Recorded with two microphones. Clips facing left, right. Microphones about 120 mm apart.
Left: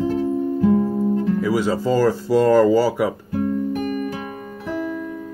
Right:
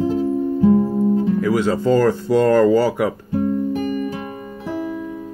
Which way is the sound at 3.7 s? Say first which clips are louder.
Right 2 dB; 30° right (ahead or behind).